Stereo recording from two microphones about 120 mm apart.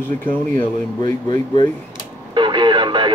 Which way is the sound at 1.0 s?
40° left (ahead or behind).